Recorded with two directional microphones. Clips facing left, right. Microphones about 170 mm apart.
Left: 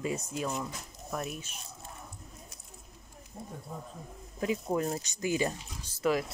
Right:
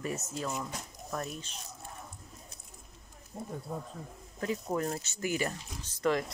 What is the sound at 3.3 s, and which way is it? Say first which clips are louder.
Speech: right 3 dB; 45° right (ahead or behind).